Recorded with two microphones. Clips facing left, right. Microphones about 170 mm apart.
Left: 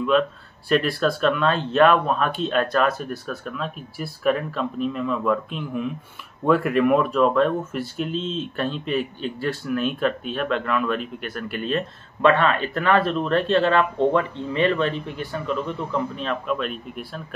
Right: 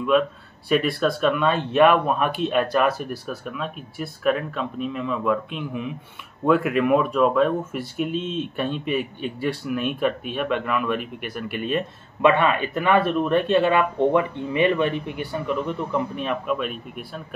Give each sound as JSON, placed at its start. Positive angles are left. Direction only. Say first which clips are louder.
{"t": 0.7, "sound": "speech", "louder": "even", "side_deg": 0}
{"t": 8.1, "sound": "speech", "louder": "right 1 dB", "side_deg": -60}
{"t": 8.8, "sound": "speech", "louder": "even", "side_deg": -10}